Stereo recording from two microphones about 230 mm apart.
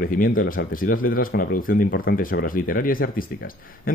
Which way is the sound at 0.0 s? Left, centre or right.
Left.